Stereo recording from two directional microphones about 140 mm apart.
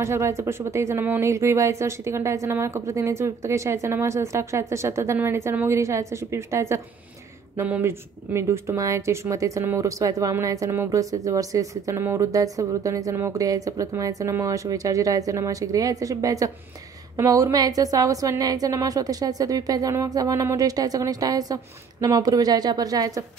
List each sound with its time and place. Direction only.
0.0 s speech: 20° right (ahead or behind)